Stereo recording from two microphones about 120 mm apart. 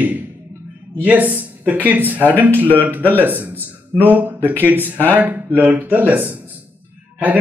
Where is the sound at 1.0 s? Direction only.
15° right (ahead or behind).